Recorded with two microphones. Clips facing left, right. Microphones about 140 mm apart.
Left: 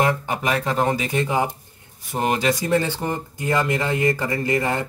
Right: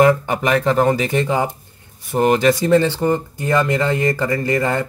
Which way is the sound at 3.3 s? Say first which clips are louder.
Right 4 dB; 15° left (ahead or behind).